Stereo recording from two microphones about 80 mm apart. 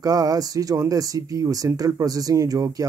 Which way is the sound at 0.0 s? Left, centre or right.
Right.